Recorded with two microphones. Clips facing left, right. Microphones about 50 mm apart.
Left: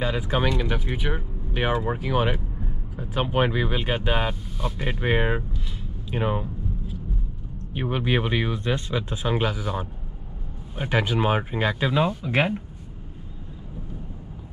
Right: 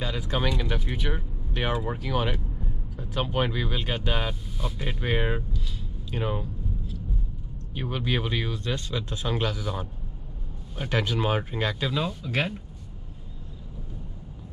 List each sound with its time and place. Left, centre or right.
0.0 s speech: centre
6.0 s a sound: centre
7.7 s speech: left